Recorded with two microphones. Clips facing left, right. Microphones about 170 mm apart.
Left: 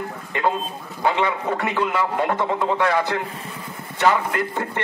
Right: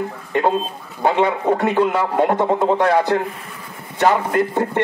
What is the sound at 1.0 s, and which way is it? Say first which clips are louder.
Speech: right 5 dB; 45° right (ahead or behind).